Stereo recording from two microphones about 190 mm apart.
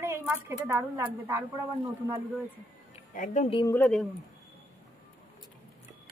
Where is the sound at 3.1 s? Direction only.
40° left (ahead or behind).